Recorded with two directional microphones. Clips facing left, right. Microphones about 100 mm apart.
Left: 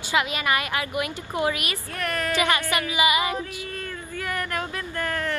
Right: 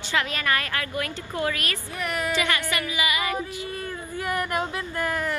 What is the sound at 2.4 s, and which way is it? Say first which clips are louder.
Music: left 3 dB; 20° left (ahead or behind).